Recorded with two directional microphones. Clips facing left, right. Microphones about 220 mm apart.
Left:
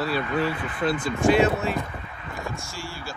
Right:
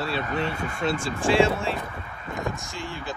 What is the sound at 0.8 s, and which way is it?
Speech, 30° right (ahead or behind).